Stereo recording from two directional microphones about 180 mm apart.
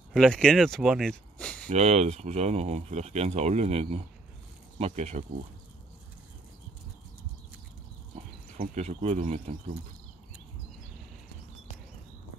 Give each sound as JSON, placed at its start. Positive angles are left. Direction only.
{"t": 0.1, "sound": "speech", "side_deg": 5}
{"t": 1.7, "sound": "speech", "side_deg": -35}
{"t": 8.5, "sound": "speech", "side_deg": -40}